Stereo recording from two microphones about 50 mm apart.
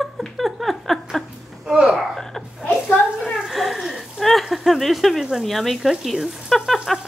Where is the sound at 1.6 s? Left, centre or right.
Centre.